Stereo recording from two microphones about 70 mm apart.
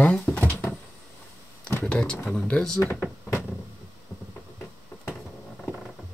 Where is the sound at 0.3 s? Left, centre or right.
Left.